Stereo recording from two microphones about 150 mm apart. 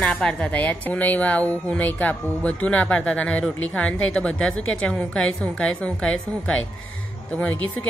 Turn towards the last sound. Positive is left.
turn(degrees=10)  # may be behind; listen again after turning